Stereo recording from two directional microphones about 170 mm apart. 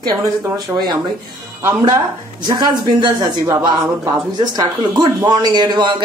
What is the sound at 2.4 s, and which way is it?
Speech, 25° right (ahead or behind).